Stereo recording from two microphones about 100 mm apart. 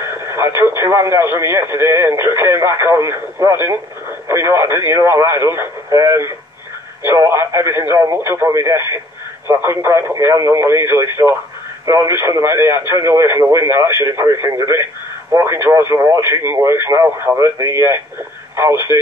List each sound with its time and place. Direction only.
0.0 s radio: 25° right (ahead or behind)
0.6 s speech: 25° right (ahead or behind)